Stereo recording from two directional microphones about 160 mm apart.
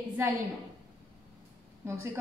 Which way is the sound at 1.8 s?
15° right (ahead or behind).